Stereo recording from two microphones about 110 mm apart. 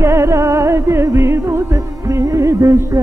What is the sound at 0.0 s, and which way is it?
Music, 25° right (ahead or behind).